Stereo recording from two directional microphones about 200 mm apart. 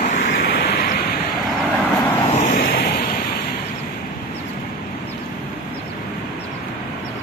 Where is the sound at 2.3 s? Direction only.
40° left (ahead or behind).